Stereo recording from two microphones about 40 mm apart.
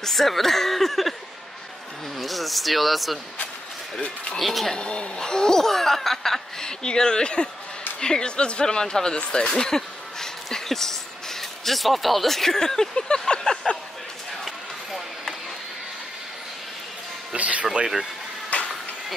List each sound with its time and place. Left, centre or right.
0.0 s speech: centre
2.1 s speech: centre
4.4 s speech: centre
4.7 s speech: left
5.2 s laughter: centre
6.6 s speech: centre
14.4 s a sound: centre
17.4 s a sound: right
18.5 s a sound: left